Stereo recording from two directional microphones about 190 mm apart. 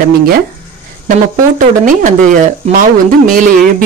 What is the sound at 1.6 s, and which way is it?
Speech, 45° right (ahead or behind).